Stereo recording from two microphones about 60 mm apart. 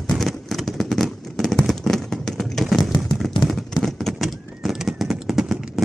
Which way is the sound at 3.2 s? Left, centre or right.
Centre.